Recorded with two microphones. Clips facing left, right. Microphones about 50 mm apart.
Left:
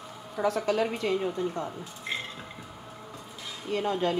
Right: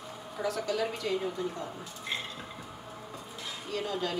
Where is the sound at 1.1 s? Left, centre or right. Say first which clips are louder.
Left 4 dB; left.